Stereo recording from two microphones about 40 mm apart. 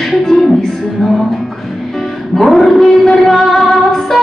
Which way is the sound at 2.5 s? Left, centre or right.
Centre.